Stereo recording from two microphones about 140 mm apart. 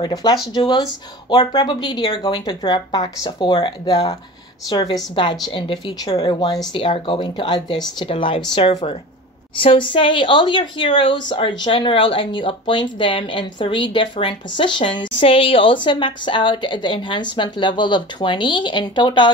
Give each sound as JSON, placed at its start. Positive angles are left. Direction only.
{"t": 0.0, "sound": "a woman's voice", "side_deg": 30}